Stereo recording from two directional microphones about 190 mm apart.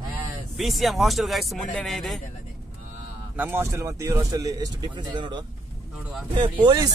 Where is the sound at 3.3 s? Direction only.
10° right (ahead or behind).